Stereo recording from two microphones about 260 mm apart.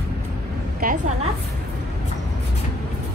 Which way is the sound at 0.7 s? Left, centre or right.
Right.